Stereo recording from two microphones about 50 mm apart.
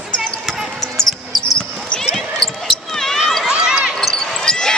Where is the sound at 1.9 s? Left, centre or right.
Centre.